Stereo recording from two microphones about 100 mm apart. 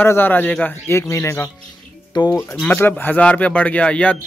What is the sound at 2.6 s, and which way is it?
Speech, 20° left (ahead or behind).